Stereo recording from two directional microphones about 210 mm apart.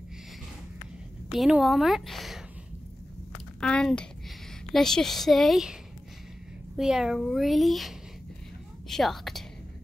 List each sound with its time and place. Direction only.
1.3 s a woman's voice: centre (ahead or behind)
3.6 s a child's voice: 5° left (ahead or behind)
6.8 s a child's voice: centre (ahead or behind)